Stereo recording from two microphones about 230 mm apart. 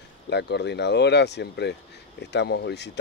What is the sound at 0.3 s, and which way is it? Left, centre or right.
Speech, left.